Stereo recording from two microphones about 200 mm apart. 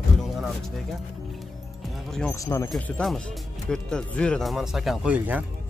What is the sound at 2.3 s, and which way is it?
Speech, 15° left (ahead or behind).